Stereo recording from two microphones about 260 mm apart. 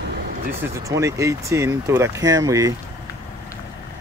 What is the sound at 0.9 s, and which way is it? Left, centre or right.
Speech, centre.